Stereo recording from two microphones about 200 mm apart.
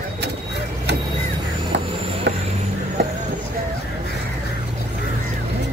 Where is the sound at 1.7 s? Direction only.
60° right (ahead or behind).